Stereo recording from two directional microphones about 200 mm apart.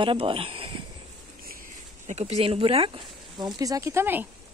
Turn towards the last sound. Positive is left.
turn(degrees=-10)  # may be behind; listen again after turning